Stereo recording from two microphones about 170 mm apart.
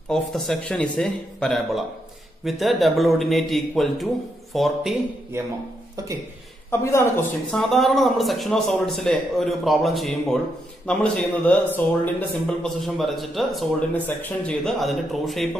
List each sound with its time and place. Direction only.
0.1 s a man's voice: centre (ahead or behind)
6.7 s a man's voice: 15° left (ahead or behind)
7.5 s a man's voice: centre (ahead or behind)